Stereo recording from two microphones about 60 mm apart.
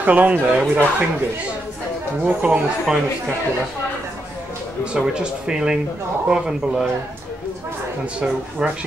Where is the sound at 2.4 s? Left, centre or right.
Centre.